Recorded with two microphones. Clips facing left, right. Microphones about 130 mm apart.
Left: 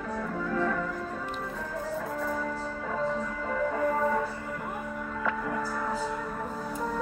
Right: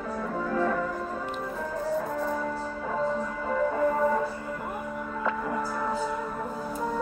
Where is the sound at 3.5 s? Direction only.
30° right (ahead or behind).